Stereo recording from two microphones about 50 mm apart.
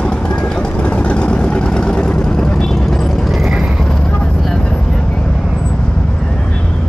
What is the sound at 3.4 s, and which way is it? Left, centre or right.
Vehicle, right.